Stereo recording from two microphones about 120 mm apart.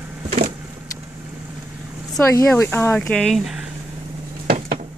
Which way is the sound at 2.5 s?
20° left (ahead or behind).